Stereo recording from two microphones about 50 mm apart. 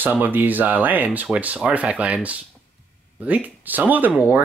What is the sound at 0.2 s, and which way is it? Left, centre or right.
Speech, right.